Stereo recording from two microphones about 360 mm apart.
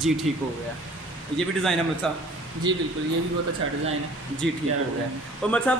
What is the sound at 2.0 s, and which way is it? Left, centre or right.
Speech, centre.